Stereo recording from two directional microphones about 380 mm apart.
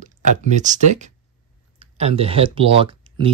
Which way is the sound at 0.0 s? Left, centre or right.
Centre.